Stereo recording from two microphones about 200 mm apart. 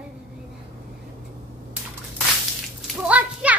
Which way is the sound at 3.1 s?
5° right (ahead or behind).